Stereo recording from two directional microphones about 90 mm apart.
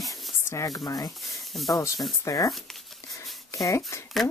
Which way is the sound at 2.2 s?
35° left (ahead or behind).